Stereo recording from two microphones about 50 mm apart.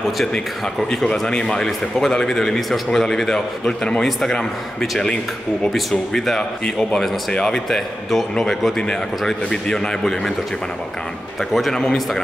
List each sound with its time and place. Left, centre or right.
0.7 s a man's voice: centre
5.7 s a man's voice: centre
11.5 s a man's voice: centre